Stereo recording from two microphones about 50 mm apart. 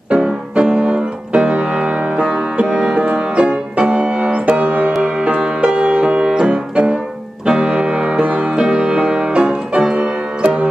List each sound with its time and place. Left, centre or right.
0.1 s music: right
5.0 s piano: right
6.7 s music: right